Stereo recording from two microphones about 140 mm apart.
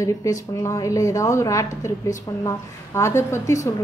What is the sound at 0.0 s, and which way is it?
A woman's voice, 25° left (ahead or behind).